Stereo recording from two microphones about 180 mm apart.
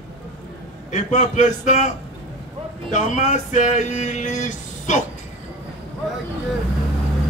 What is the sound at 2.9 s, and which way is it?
Speech, 45° left (ahead or behind).